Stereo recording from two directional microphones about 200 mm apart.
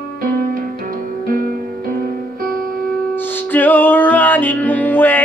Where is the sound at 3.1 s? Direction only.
10° left (ahead or behind).